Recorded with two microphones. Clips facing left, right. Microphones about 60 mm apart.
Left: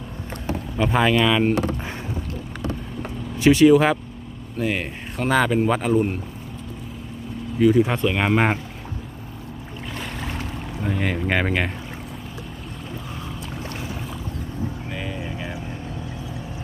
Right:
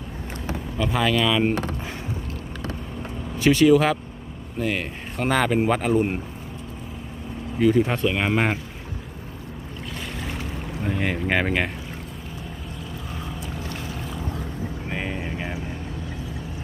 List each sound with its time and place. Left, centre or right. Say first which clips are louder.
0.7 s speech: left 3 dB; left
3.4 s speech: left 2 dB; centre
5.2 s speech: left 2 dB; centre
7.5 s speech: left 2 dB; centre
7.8 s speech: left 2 dB; centre
8.1 s speech: left 3 dB; centre
9.9 s boat: left 2 dB; centre
10.8 s speech: left 1 dB; centre
14.9 s vehicle: right 1 dB; right